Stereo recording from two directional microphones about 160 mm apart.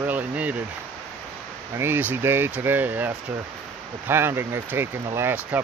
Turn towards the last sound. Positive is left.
turn(degrees=-15)  # may be behind; listen again after turning